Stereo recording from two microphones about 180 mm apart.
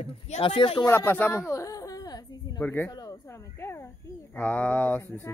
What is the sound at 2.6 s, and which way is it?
Speech, 10° left (ahead or behind).